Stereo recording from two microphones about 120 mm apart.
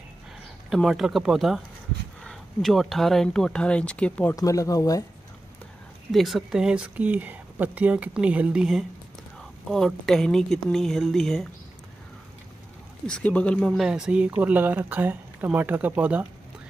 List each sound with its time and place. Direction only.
0.7 s speech: centre (ahead or behind)
4.4 s speech: 30° left (ahead or behind)
6.1 s speech: centre (ahead or behind)
13.0 s speech: 10° left (ahead or behind); by 16.3 s 15° right (ahead or behind)